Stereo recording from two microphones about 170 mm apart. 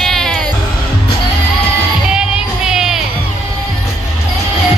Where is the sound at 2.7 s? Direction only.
5° right (ahead or behind).